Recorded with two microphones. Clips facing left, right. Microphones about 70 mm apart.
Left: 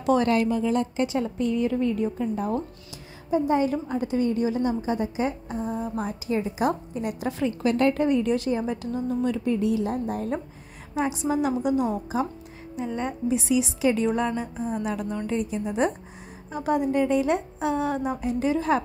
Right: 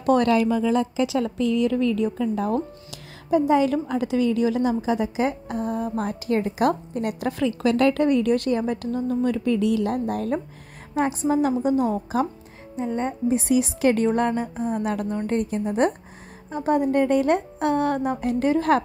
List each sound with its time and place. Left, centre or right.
0.0 s speech: right
1.0 s speech: right
9.5 s speech: right
11.0 s a woman's voice: right
13.4 s a woman's voice: right